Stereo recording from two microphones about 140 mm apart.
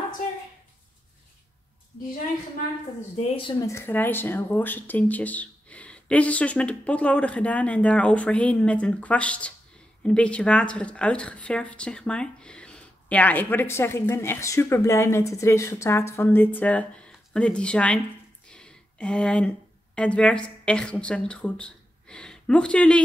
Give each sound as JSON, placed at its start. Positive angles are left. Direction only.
{"t": 3.2, "sound": "speech", "side_deg": 40}
{"t": 3.6, "sound": "speech", "side_deg": 15}
{"t": 18.5, "sound": "a sound", "side_deg": 5}
{"t": 20.0, "sound": "a woman's voice", "side_deg": 10}